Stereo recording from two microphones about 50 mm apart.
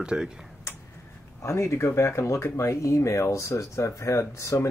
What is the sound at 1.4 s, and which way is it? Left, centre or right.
Speech, left.